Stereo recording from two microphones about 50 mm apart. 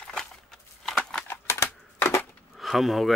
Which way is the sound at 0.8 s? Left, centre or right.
Centre.